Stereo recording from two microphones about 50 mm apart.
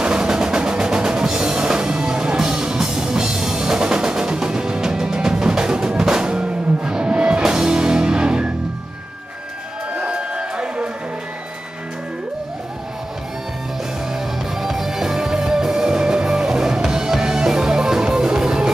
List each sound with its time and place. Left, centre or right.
0.0 s music: centre
9.9 s a sound: centre
14.6 s music: centre